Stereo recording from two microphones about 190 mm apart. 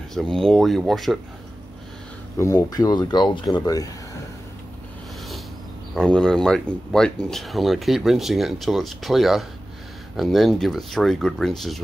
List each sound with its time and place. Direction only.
0.1 s speech: 5° left (ahead or behind)
2.3 s speech: 15° left (ahead or behind)
5.9 s speech: 5° left (ahead or behind)